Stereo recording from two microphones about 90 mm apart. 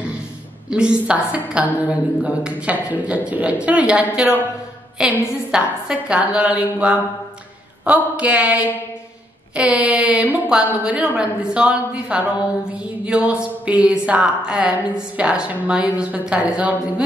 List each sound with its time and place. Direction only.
0.7 s a woman's voice: 10° right (ahead or behind)